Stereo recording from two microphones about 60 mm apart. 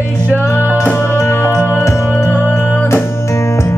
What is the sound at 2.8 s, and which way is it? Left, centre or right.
Music, left.